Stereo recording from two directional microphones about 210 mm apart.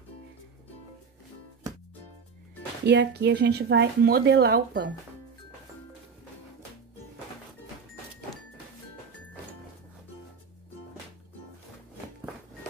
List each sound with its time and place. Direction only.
2.8 s speech: 55° right (ahead or behind)